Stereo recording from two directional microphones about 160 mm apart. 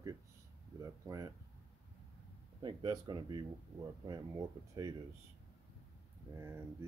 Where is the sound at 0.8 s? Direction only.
20° right (ahead or behind).